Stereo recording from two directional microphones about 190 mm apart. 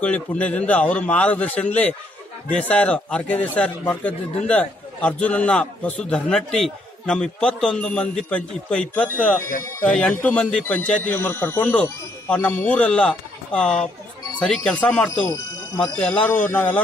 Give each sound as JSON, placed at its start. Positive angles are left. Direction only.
{"t": 0.0, "sound": "a man's voice", "side_deg": 5}